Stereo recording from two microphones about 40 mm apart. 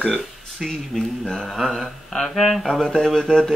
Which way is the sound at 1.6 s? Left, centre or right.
Centre.